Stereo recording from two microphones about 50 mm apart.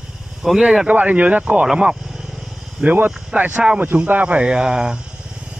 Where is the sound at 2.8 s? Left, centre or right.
Right.